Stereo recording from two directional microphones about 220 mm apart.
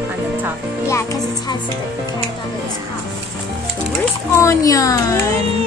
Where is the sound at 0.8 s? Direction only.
15° left (ahead or behind).